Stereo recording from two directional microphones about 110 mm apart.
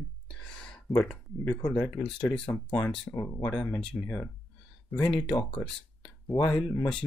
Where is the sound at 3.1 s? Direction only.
40° left (ahead or behind).